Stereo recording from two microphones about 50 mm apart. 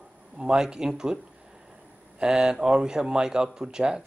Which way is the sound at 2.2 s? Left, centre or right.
Centre.